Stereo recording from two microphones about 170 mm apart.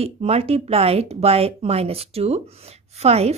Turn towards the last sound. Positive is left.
turn(degrees=-40)  # may be behind; listen again after turning